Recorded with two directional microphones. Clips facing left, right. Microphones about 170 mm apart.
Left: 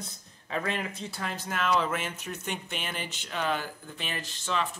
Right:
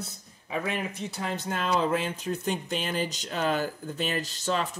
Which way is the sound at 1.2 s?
25° right (ahead or behind).